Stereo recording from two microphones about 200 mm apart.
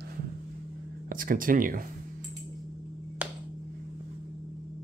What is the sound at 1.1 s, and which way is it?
Speech, 45° right (ahead or behind).